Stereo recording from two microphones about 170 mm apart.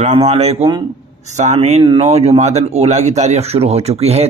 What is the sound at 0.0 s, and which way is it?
Speech, 40° right (ahead or behind).